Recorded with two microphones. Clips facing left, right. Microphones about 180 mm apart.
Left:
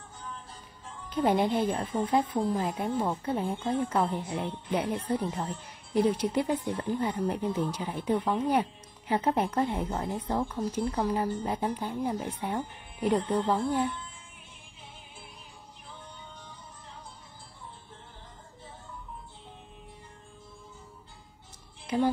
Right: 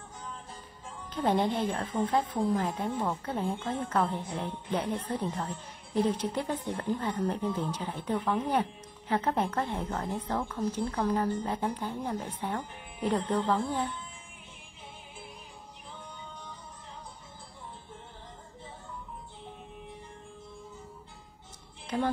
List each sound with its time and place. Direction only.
1.1 s speech: 10° left (ahead or behind)
21.8 s speech: 10° left (ahead or behind)